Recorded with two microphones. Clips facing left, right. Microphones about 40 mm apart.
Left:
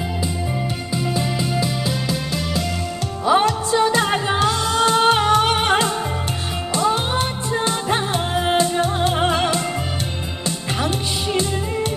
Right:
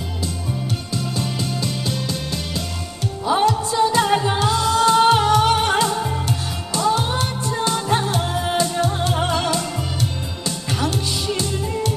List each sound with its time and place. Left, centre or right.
1.6 s music: centre
3.3 s music: left
4.0 s music: left